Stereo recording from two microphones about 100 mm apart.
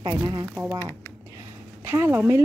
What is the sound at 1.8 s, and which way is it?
Speech, 25° right (ahead or behind).